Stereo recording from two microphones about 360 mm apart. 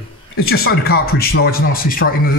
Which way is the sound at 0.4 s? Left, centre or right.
Left.